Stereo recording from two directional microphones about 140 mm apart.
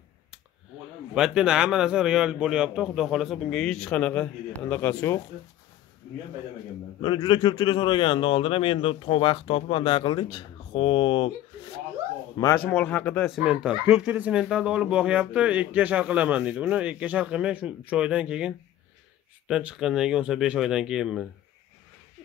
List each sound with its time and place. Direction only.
1.1 s a man's voice: 5° right (ahead or behind); by 5.2 s 15° left (ahead or behind)
7.0 s speech: 35° left (ahead or behind)
12.5 s speech: 10° left (ahead or behind)
13.3 s a man's voice: 5° right (ahead or behind)